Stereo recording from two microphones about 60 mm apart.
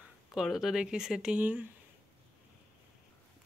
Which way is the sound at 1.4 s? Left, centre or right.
Right.